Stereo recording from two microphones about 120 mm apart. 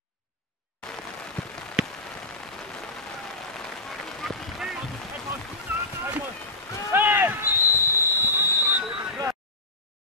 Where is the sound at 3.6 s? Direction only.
5° left (ahead or behind).